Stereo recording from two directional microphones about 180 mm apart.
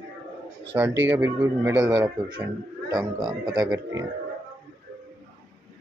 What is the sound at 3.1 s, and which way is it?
Speech, 25° right (ahead or behind).